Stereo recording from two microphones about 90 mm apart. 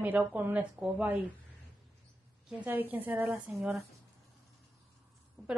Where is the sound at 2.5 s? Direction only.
20° right (ahead or behind).